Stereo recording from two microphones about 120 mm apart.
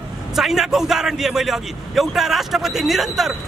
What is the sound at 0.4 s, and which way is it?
A man's voice, 5° right (ahead or behind).